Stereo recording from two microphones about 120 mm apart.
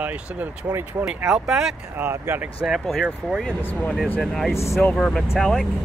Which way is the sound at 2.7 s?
Centre (ahead or behind).